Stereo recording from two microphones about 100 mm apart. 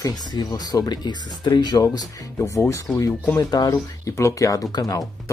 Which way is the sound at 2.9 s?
5° left (ahead or behind).